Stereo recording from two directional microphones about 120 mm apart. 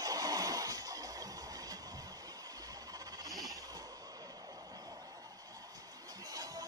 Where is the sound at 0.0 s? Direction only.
30° right (ahead or behind).